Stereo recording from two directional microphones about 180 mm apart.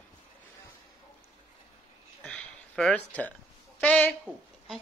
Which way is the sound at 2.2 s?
5° left (ahead or behind).